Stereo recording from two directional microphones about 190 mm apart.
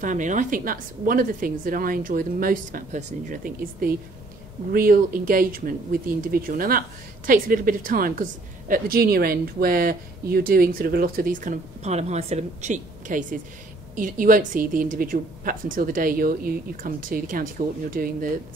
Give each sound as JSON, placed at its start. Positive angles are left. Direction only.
{"t": 0.0, "sound": "a woman's voice", "side_deg": -40}